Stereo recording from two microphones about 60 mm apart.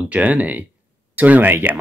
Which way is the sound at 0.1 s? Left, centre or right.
Right.